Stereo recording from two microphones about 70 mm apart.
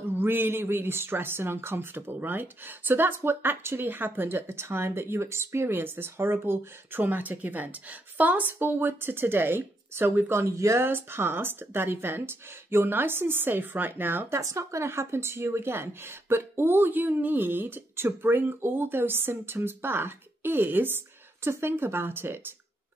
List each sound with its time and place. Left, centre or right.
0.2 s speech: right
10.4 s speech: right
10.8 s speech: right
14.4 s speech: right